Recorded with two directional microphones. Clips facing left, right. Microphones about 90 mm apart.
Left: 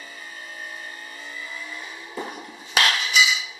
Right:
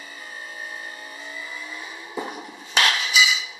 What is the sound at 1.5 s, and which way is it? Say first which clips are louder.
Vehicle: even; 5° right (ahead or behind).